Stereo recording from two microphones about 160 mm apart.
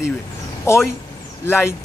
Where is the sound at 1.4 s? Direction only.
15° left (ahead or behind).